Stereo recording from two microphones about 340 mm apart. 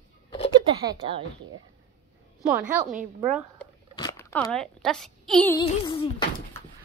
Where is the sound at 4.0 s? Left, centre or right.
Centre.